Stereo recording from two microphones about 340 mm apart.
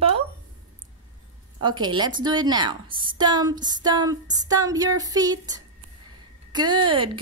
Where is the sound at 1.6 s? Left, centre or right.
Centre.